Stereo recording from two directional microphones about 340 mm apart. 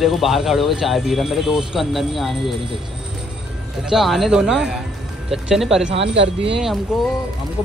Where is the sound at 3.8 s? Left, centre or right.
Centre.